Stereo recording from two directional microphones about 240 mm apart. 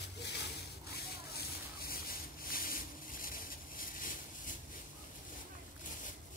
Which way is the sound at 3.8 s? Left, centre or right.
Left.